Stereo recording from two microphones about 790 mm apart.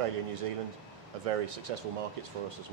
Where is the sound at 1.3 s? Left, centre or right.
Right.